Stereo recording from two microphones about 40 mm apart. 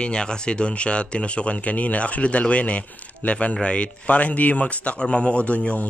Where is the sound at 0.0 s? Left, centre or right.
Left.